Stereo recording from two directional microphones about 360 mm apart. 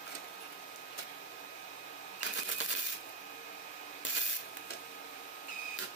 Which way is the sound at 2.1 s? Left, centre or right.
Left.